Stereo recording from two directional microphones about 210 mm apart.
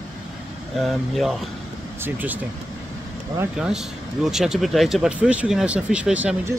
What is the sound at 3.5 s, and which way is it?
Speech, 5° right (ahead or behind).